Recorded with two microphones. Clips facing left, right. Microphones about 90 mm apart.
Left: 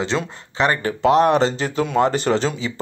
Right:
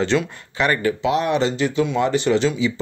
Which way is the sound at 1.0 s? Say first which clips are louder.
Left 7 dB; 40° left (ahead or behind).